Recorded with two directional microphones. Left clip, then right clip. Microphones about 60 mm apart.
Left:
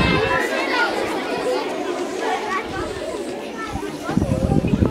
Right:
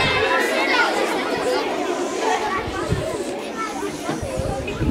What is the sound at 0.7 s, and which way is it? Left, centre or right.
Chatter, right.